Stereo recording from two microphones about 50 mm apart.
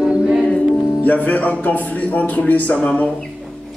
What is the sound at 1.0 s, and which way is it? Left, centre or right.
Speech, left.